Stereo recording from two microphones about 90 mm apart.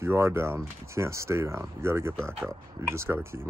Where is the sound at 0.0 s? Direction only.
25° right (ahead or behind).